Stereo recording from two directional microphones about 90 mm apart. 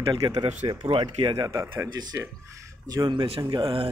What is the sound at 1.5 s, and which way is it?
Speech, 30° right (ahead or behind).